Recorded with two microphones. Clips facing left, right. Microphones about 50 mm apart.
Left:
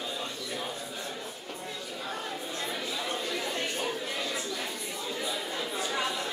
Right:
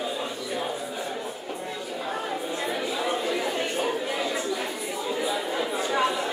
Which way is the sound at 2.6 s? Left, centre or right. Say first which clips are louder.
Right 6 dB; centre.